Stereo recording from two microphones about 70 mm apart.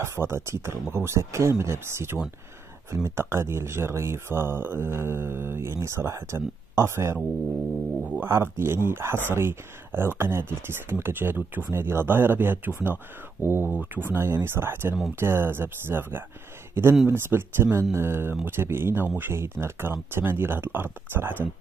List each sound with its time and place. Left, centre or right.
0.0 s speech: right
8.2 s speech: right